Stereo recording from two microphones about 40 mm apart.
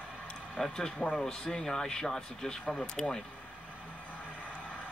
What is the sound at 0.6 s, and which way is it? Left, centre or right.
Speech, centre.